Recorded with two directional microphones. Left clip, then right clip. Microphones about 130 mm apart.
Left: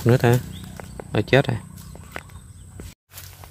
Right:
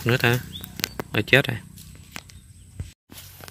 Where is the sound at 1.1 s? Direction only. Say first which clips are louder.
Even; 10° left (ahead or behind).